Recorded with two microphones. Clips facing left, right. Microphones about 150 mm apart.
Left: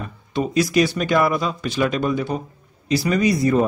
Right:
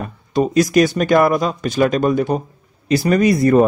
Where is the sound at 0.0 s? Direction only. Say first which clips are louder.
Right 6 dB; 45° right (ahead or behind).